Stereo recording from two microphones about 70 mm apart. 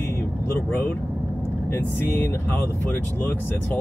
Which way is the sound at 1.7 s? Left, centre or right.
Left.